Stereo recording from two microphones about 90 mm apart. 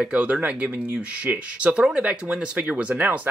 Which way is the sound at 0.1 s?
15° right (ahead or behind).